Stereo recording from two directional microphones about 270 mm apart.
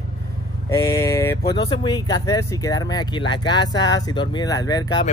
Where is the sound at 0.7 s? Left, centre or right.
Centre.